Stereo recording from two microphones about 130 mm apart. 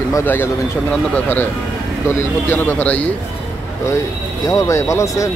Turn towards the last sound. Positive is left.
turn(degrees=25)  # may be behind; listen again after turning